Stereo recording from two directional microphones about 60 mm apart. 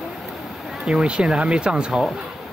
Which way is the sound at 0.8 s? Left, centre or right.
Centre.